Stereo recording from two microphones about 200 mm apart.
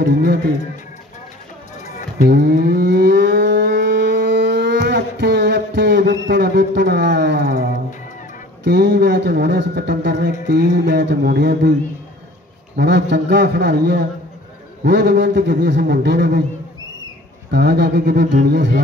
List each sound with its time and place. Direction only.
0.0 s speech: 45° right (ahead or behind)
2.1 s moo: 55° right (ahead or behind)
8.6 s speech: 60° right (ahead or behind)
12.7 s speech: 60° right (ahead or behind)
17.5 s speech: 55° right (ahead or behind)